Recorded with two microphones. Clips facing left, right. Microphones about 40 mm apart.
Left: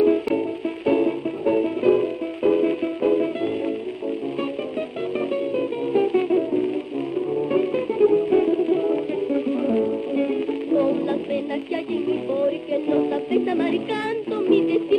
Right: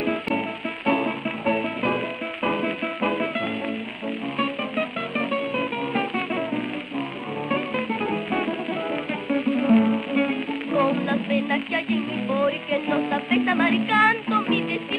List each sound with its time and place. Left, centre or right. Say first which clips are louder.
0.0 s music: left 6 dB; right
4.4 s music: right 1 dB; right